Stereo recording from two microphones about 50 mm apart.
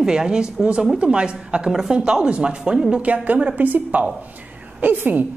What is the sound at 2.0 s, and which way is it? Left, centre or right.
Speech, centre.